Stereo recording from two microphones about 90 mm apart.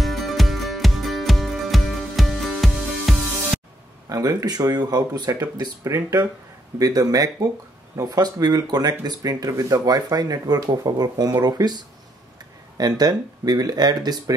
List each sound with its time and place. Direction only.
0.0 s music: centre (ahead or behind)
4.1 s speech: 40° right (ahead or behind)